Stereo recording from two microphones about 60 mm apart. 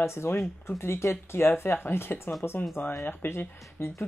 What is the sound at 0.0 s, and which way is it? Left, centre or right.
Speech, left.